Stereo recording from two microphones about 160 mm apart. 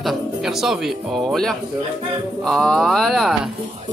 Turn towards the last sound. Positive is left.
turn(degrees=0)  # may be behind; listen again after turning